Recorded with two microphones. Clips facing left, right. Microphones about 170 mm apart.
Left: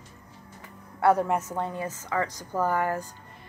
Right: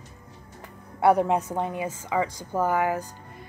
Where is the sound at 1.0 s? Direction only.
15° right (ahead or behind).